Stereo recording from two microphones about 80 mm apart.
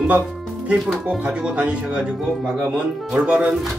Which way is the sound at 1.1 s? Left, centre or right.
Centre.